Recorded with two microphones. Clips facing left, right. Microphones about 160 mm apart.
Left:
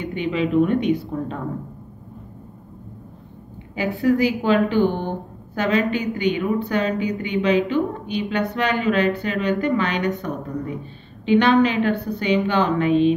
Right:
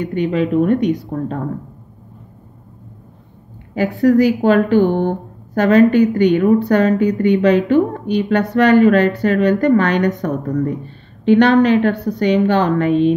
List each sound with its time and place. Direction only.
0.0 s a woman's voice: 45° right (ahead or behind)
3.7 s a woman's voice: 45° right (ahead or behind)
11.2 s a woman's voice: 60° right (ahead or behind)
11.6 s a woman's voice: 45° right (ahead or behind)
11.9 s a woman's voice: 70° right (ahead or behind)
12.4 s a woman's voice: 45° right (ahead or behind)